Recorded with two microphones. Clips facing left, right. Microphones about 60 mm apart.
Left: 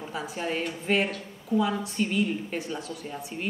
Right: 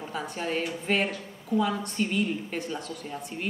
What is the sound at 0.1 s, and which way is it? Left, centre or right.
A woman's voice, centre.